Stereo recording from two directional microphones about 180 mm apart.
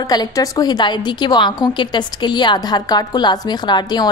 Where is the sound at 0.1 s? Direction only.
20° left (ahead or behind).